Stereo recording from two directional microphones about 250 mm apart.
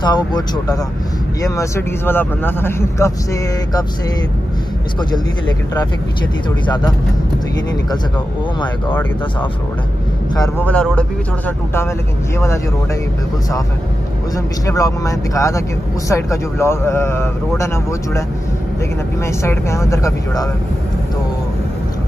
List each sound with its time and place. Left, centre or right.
0.0 s speech: centre
10.3 s speech: centre
14.3 s speech: centre
19.2 s speech: centre